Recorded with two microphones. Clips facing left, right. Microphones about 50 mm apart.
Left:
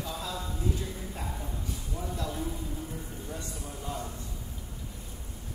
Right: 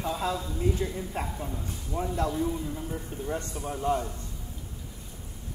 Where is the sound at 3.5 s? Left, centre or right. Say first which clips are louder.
Right 10 dB; right.